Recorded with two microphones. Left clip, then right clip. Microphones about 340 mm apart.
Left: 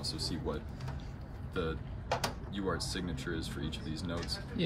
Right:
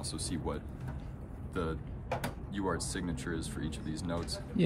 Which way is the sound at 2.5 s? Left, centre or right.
Right.